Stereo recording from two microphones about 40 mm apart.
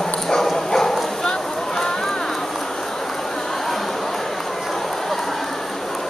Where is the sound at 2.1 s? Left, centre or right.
Centre.